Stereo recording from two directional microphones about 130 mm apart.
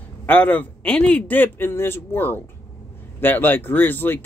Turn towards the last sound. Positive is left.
turn(degrees=15)  # may be behind; listen again after turning